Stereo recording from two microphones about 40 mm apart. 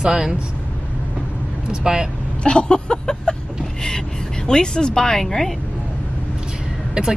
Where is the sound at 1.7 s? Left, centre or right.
Centre.